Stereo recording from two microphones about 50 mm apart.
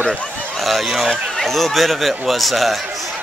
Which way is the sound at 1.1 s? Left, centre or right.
Centre.